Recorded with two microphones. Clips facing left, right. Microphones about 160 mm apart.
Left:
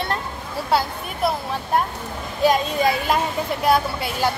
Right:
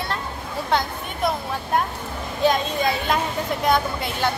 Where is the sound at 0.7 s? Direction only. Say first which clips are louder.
Left 2 dB; 5° left (ahead or behind).